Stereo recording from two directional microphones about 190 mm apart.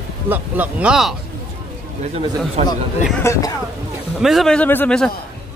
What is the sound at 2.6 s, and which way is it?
Speech, 35° right (ahead or behind).